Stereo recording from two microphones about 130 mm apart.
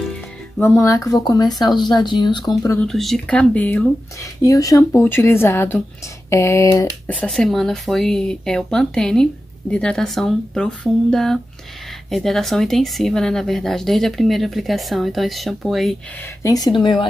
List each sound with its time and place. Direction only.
0.6 s speech: 20° left (ahead or behind)
2.8 s speech: centre (ahead or behind)
4.2 s speech: 25° left (ahead or behind)
7.1 s speech: 5° left (ahead or behind)
16.4 s speech: 30° left (ahead or behind)